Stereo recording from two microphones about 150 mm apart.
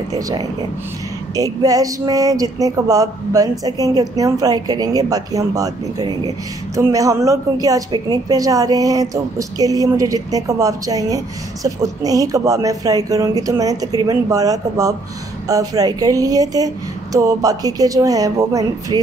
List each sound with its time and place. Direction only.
0.1 s a woman's voice: 25° right (ahead or behind)